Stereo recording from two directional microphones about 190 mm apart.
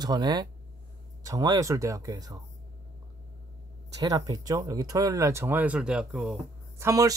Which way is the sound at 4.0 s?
20° right (ahead or behind).